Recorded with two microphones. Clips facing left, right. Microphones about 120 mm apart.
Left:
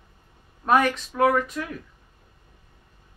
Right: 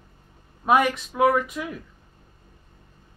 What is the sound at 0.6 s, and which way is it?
Speech, 5° right (ahead or behind).